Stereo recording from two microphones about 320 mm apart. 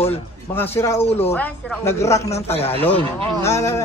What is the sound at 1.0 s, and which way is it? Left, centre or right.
Speech, centre.